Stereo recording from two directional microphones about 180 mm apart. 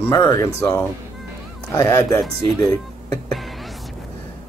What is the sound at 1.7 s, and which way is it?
Speech, 15° left (ahead or behind).